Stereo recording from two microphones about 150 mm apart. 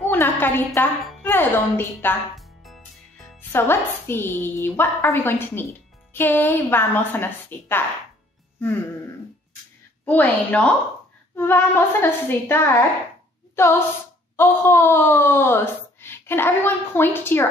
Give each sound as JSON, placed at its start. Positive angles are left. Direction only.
{"t": 0.1, "sound": "a sound", "side_deg": 15}
{"t": 0.7, "sound": "speech", "side_deg": 15}
{"t": 2.3, "sound": "music", "side_deg": 0}
{"t": 3.3, "sound": "speech", "side_deg": 15}
{"t": 10.0, "sound": "speech", "side_deg": 10}